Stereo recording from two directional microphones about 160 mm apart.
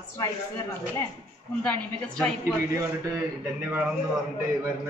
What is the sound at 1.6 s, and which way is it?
Speech, 5° left (ahead or behind).